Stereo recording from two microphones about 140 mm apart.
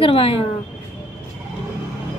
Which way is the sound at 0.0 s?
40° left (ahead or behind).